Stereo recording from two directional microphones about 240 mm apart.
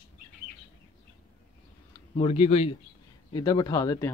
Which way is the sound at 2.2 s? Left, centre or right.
Left.